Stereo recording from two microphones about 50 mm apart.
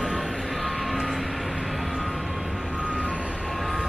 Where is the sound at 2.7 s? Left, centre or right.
Centre.